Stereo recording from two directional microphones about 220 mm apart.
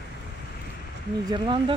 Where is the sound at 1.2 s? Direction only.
20° right (ahead or behind).